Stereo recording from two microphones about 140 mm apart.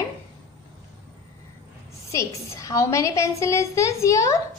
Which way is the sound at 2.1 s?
20° left (ahead or behind).